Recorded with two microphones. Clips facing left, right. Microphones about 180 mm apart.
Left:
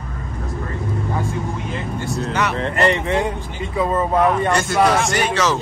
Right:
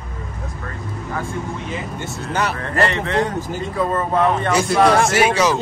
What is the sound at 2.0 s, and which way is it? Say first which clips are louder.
Speech: left 2 dB; 30° right (ahead or behind).